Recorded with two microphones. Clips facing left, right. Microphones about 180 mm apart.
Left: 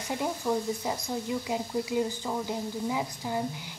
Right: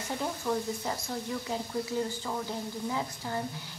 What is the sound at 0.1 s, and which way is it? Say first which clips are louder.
Speech: left 3 dB; 15° left (ahead or behind).